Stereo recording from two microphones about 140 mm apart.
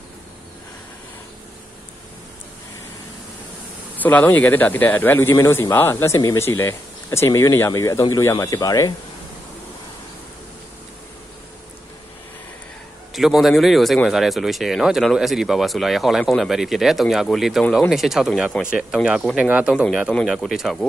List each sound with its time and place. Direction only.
3.9 s speech: 10° left (ahead or behind)
13.1 s speech: centre (ahead or behind)